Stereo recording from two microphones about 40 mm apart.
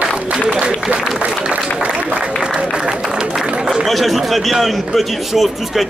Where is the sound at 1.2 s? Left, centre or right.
Right.